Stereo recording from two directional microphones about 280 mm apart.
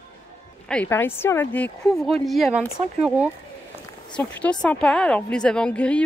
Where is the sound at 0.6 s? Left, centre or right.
Centre.